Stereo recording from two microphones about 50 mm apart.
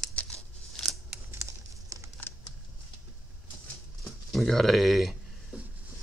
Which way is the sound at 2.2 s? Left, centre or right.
Left.